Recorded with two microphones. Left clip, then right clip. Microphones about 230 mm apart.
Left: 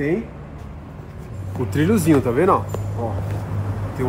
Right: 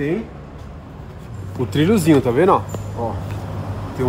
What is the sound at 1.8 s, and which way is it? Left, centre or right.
Speech, right.